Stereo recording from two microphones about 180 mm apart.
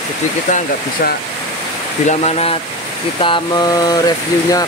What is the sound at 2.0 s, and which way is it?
Speech, 35° left (ahead or behind).